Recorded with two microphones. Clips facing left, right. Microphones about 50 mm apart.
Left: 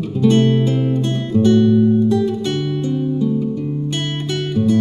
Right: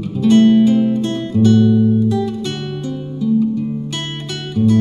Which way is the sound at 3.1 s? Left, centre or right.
Centre.